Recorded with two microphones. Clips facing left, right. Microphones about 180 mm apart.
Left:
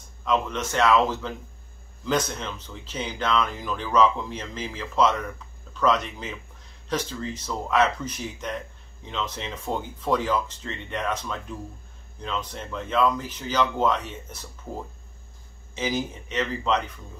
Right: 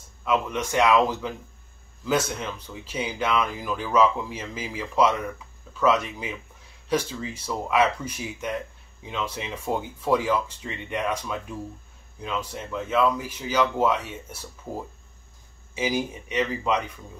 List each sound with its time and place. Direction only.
0.2 s speech: 10° right (ahead or behind)
15.7 s speech: 10° right (ahead or behind)